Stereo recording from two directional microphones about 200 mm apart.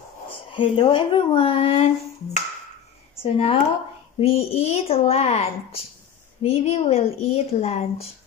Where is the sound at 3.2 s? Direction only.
30° left (ahead or behind).